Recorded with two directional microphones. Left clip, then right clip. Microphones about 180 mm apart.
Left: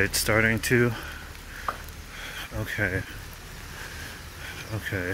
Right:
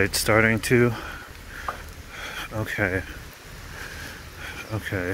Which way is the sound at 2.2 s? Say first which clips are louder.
Right 4 dB; 35° right (ahead or behind).